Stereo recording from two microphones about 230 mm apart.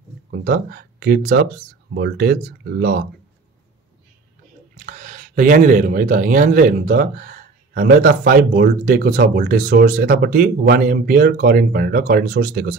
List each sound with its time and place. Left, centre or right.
0.3 s speech: right
4.7 s speech: right